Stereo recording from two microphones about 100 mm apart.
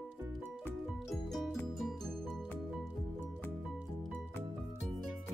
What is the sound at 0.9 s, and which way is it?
Music, centre (ahead or behind).